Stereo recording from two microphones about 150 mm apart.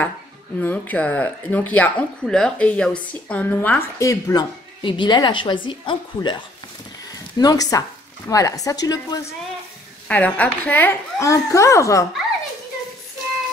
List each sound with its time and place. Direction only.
0.6 s speech: 10° left (ahead or behind); by 6.4 s 30° left (ahead or behind)
7.1 s a sound: 25° left (ahead or behind)
8.3 s a woman's voice: 20° left (ahead or behind)
10.0 s speech: 10° left (ahead or behind)